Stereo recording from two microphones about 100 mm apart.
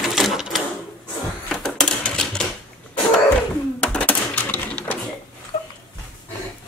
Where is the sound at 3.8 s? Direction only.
15° left (ahead or behind).